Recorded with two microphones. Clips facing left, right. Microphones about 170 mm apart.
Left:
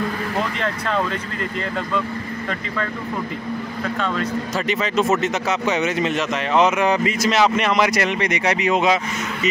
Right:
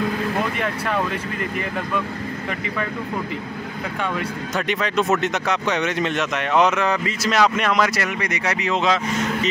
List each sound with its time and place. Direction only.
0.6 s speech: 15° right (ahead or behind)
4.6 s speech: centre (ahead or behind)
6.8 s speech: 15° left (ahead or behind)
7.2 s speech: centre (ahead or behind)
7.8 s speech: 20° left (ahead or behind)